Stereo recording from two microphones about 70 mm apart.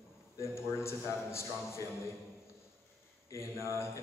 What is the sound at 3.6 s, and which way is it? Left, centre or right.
Speech, left.